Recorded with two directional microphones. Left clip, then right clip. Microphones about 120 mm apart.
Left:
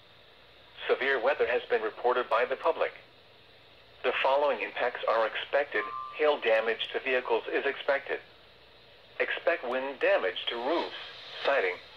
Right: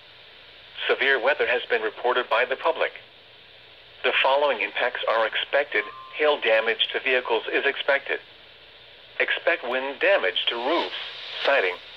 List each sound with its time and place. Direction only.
0.7 s speech: 30° right (ahead or behind)
4.0 s speech: 25° right (ahead or behind)